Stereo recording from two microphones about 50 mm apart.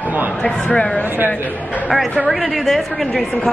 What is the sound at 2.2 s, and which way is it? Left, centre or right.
Speech, centre.